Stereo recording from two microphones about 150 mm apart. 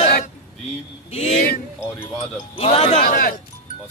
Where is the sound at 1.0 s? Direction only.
50° left (ahead or behind).